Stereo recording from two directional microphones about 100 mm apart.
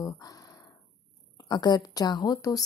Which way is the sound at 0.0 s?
35° left (ahead or behind).